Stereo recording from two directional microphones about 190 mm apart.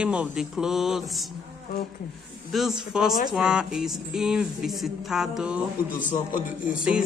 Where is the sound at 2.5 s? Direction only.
5° right (ahead or behind).